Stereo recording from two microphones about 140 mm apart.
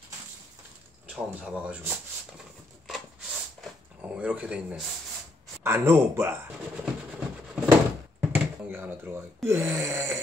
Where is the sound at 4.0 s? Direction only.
10° right (ahead or behind).